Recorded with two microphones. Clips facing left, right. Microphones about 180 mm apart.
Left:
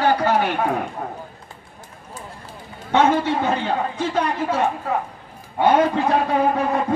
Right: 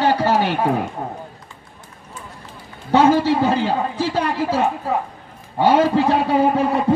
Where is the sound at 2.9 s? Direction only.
35° right (ahead or behind).